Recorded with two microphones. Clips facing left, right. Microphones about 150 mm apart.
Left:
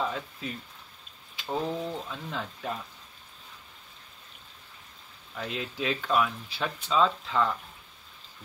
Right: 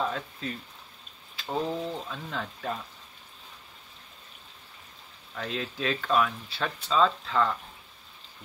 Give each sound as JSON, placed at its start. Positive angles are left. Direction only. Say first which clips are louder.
{"t": 0.1, "sound": "speech", "louder": "right 1 dB", "side_deg": 15}
{"t": 1.4, "sound": "speech", "louder": "right 1 dB", "side_deg": 0}
{"t": 1.8, "sound": "speech", "louder": "even", "side_deg": 10}
{"t": 5.3, "sound": "speech", "louder": "right 1 dB", "side_deg": 10}